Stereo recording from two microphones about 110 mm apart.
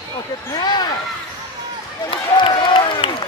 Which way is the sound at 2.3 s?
45° left (ahead or behind).